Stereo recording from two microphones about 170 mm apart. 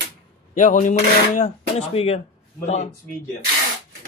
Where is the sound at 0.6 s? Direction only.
45° left (ahead or behind).